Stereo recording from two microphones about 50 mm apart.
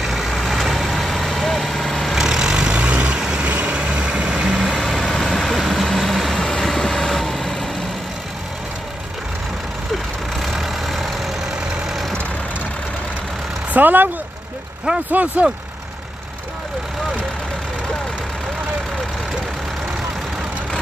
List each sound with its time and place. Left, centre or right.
0.0 s vehicle: centre
2.1 s vehicle: centre; by 3.2 s right
3.2 s vehicle: centre
3.4 s vehicle: right
3.8 s vehicle: centre
4.6 s vehicle: centre
10.4 s vehicle: centre
13.7 s speech: right